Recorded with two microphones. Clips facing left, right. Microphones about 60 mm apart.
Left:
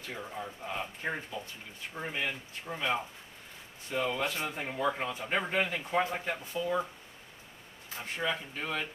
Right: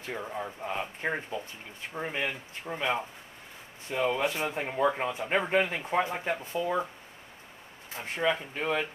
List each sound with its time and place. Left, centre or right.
0.0 s speech: right
8.0 s speech: right